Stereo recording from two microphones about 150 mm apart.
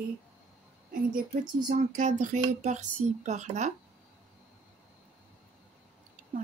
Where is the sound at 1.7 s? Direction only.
55° right (ahead or behind).